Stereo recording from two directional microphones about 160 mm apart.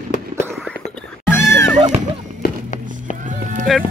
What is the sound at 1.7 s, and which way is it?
Music, 45° right (ahead or behind).